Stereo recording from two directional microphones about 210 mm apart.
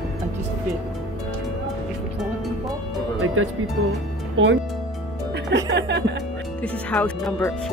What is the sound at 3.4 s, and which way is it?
Speech, 80° right.